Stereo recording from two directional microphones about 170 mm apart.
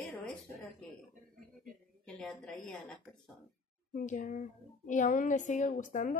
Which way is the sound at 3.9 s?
55° left (ahead or behind).